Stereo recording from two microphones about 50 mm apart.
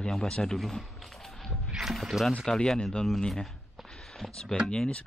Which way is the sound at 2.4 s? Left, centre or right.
Centre.